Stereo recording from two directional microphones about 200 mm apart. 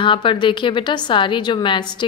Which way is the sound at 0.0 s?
25° left (ahead or behind).